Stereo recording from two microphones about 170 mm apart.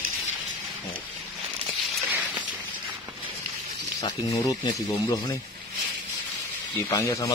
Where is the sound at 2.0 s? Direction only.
5° right (ahead or behind).